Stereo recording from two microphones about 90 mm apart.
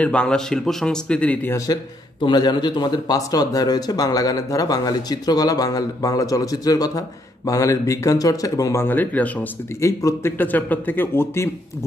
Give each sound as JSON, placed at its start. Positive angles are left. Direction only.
{"t": 0.0, "sound": "speech", "side_deg": 10}
{"t": 2.2, "sound": "speech", "side_deg": 50}
{"t": 8.7, "sound": "a man's voice", "side_deg": 20}
{"t": 9.8, "sound": "a man's voice", "side_deg": 35}
{"t": 10.3, "sound": "a man's voice", "side_deg": 20}